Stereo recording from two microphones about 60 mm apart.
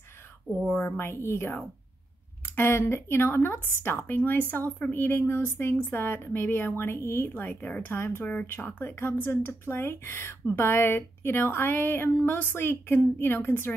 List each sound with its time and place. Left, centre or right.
0.7 s speech: left
0.9 s speech: left
2.4 s a sound: left
2.9 s a woman's voice: left